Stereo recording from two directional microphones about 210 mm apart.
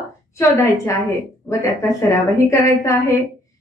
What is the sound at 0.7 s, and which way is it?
A woman's voice, 15° left (ahead or behind).